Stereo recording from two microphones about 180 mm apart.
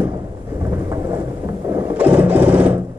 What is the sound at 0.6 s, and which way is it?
Thunder, 15° right (ahead or behind).